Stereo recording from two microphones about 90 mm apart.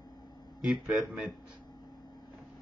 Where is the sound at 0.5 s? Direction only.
5° right (ahead or behind).